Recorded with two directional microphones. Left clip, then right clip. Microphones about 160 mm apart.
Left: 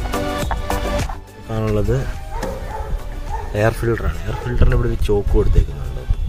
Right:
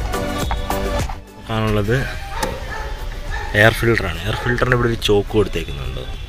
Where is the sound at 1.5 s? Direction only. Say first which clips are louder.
Right 1 dB; 5° left (ahead or behind).